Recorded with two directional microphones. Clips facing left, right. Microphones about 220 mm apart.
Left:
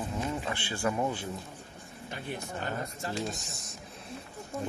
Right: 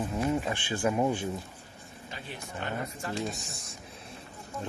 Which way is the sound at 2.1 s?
50° left (ahead or behind).